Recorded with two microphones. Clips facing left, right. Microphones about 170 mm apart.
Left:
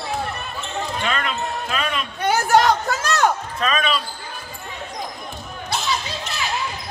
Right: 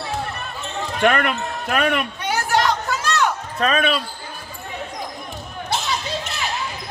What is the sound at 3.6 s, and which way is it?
Speech, 55° right (ahead or behind).